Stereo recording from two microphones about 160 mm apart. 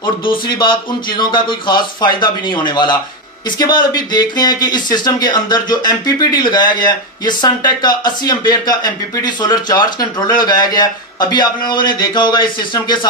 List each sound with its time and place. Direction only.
0.0 s speech: 30° left (ahead or behind)